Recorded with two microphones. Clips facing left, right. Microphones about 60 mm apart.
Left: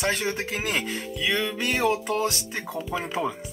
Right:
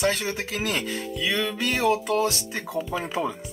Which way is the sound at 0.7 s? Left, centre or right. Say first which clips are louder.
Even; centre.